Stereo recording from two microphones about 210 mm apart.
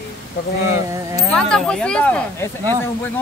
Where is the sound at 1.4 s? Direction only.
5° left (ahead or behind).